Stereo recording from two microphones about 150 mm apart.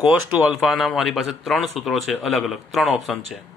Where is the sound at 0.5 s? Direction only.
Centre (ahead or behind).